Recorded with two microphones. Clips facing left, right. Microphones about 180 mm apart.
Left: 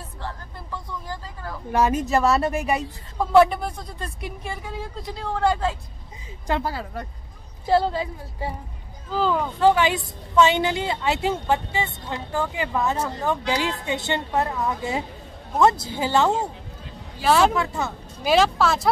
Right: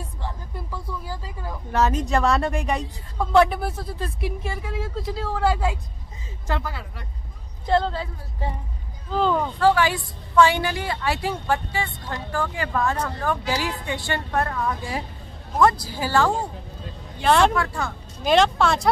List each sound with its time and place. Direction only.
0.2 s a sound: 10° right (ahead or behind)
1.7 s speech: 10° left (ahead or behind); by 5.8 s 10° right (ahead or behind)
6.6 s a woman's voice: 40° left (ahead or behind)
7.6 s a woman's voice: 10° left (ahead or behind)
9.6 s a woman's voice: 20° left (ahead or behind)
17.2 s speech: 5° left (ahead or behind)
17.6 s a woman's voice: 20° left (ahead or behind)
18.2 s speech: 5° left (ahead or behind)